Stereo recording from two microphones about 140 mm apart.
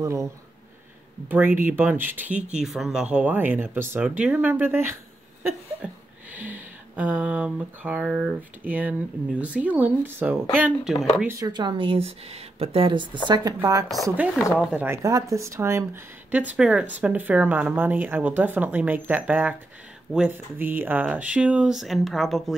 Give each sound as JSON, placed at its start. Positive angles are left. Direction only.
{"t": 0.0, "sound": "speech", "side_deg": -20}
{"t": 1.3, "sound": "speech", "side_deg": -15}
{"t": 6.3, "sound": "speech", "side_deg": -10}
{"t": 10.6, "sound": "speech", "side_deg": -5}
{"t": 11.3, "sound": "a woman's voice", "side_deg": -30}
{"t": 14.5, "sound": "speech", "side_deg": -5}
{"t": 14.9, "sound": "speech", "side_deg": -25}